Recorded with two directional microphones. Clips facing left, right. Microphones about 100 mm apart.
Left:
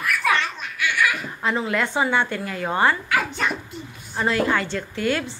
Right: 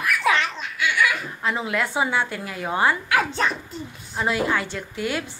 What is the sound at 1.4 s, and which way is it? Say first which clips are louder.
A woman's voice: left 2 dB; 5° right (ahead or behind).